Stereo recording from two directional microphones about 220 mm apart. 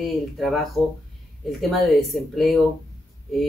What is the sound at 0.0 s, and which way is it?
Speech, centre (ahead or behind).